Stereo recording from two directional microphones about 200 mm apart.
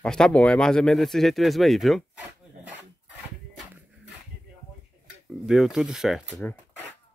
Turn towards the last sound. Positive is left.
turn(degrees=-5)  # may be behind; listen again after turning